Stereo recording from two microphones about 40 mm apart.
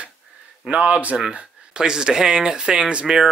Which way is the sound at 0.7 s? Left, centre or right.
Right.